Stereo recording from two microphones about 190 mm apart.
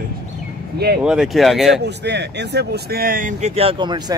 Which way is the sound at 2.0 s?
65° right (ahead or behind).